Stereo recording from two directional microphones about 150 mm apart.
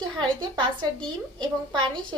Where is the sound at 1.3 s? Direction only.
30° right (ahead or behind).